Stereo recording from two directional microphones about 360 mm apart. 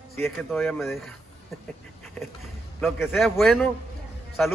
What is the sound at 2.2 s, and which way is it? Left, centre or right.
A man's voice, centre.